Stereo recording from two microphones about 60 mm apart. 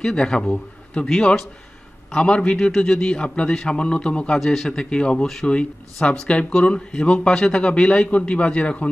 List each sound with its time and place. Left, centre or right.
0.0 s speech: centre
4.4 s a man's voice: centre
4.6 s speech: centre